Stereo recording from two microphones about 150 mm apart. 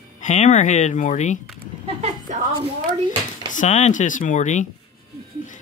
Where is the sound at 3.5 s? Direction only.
50° left (ahead or behind).